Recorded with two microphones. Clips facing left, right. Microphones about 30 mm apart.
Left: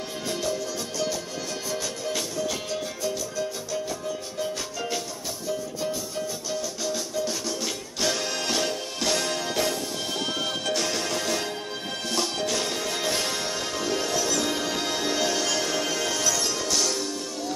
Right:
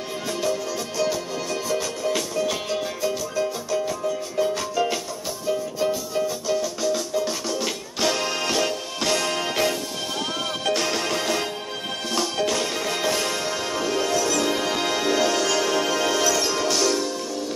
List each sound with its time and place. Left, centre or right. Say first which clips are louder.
0.9 s music: right 6 dB; centre
9.3 s music: right 3 dB; right
13.1 s music: right 3 dB; centre
14.5 s music: right 4 dB; right